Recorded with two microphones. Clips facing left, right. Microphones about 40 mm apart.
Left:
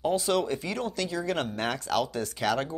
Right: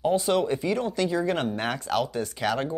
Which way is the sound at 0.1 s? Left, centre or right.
Centre.